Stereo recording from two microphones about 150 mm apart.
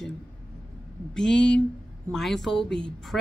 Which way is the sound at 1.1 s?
5° left (ahead or behind).